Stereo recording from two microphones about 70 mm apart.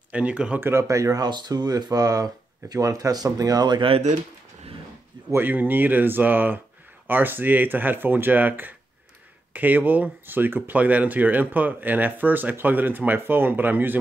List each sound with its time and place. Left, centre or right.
0.1 s speech: centre
0.6 s speech: right
0.8 s speech: right
1.2 s speech: right
5.3 s speech: right